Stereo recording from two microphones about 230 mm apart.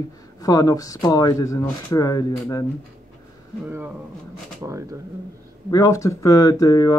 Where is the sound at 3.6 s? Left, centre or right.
Centre.